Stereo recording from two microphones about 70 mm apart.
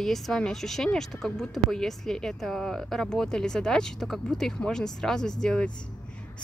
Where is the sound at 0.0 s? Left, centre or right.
Centre.